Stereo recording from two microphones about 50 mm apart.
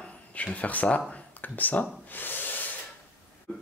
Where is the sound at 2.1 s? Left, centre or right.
Left.